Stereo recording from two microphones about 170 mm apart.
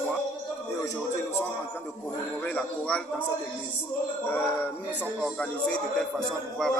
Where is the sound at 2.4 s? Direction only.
10° left (ahead or behind).